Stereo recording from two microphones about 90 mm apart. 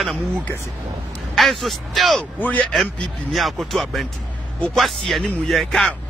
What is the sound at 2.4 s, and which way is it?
Speech, 20° left (ahead or behind).